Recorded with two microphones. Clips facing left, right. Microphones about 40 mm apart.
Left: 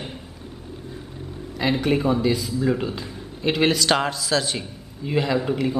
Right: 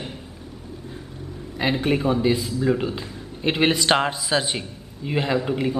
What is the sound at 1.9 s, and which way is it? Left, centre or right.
Speech, centre.